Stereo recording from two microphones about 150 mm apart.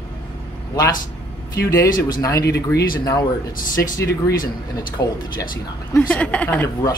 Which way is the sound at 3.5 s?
65° left (ahead or behind).